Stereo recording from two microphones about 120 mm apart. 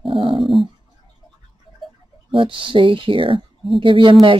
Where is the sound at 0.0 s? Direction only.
45° right (ahead or behind).